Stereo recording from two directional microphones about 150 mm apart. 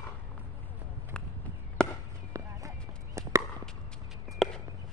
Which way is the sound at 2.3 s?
20° right (ahead or behind).